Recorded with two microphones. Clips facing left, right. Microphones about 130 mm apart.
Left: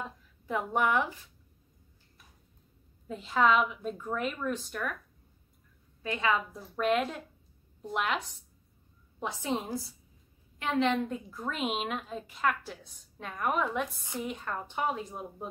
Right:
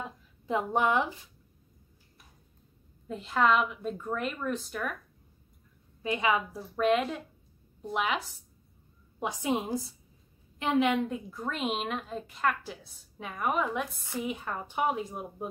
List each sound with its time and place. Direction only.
0.5 s speech: 20° right (ahead or behind)
3.1 s a woman's voice: centre (ahead or behind)
6.0 s a woman's voice: 15° right (ahead or behind)
6.5 s a woman's voice: centre (ahead or behind)
9.2 s a woman's voice: 15° right (ahead or behind)